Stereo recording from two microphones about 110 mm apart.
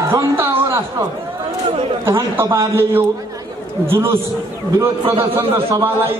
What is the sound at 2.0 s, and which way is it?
A man's voice, 25° right (ahead or behind).